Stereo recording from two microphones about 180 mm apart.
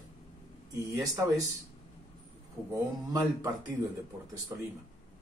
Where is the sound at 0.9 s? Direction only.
20° right (ahead or behind).